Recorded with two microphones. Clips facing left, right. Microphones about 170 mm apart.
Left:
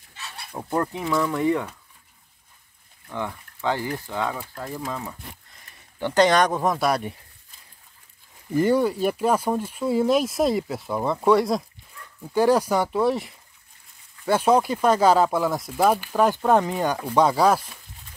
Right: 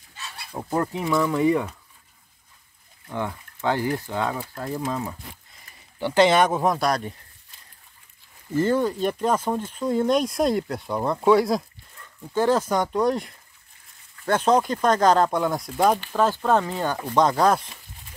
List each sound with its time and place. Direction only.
0.7 s speech: 15° right (ahead or behind)
3.1 s speech: 15° right (ahead or behind); by 7.0 s centre (ahead or behind)
8.5 s speech: 15° left (ahead or behind)
12.2 s speech: 10° left (ahead or behind)